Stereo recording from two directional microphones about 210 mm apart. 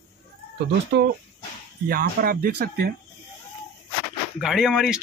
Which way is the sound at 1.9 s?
45° right (ahead or behind).